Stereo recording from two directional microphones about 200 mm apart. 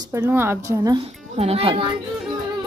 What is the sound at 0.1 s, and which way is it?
Speech, 15° right (ahead or behind).